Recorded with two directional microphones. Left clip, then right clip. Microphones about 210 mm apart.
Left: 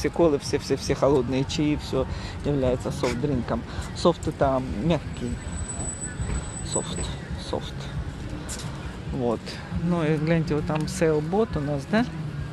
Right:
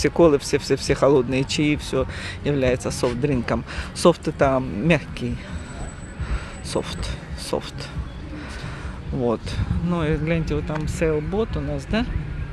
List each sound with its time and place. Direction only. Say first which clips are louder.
0.0 s speech: right 5 dB; 20° right (ahead or behind)
6.7 s speech: right 4 dB; 20° right (ahead or behind)
9.8 s speech: right 1 dB; 5° right (ahead or behind)